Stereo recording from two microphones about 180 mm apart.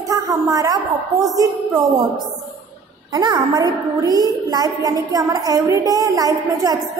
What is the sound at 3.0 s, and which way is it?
A woman's voice, 25° right (ahead or behind).